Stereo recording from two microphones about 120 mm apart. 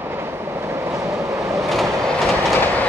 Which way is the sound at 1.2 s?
25° right (ahead or behind).